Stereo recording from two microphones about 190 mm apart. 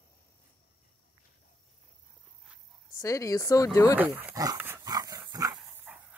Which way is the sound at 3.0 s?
15° left (ahead or behind).